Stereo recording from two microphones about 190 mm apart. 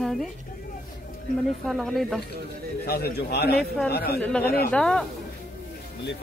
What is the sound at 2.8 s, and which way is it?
A man's voice, 55° left (ahead or behind).